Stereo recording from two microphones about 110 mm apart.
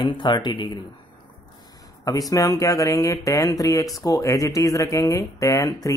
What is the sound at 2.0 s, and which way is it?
Speech, 30° left (ahead or behind).